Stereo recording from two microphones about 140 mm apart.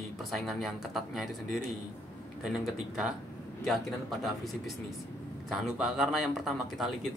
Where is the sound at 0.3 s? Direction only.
Centre (ahead or behind).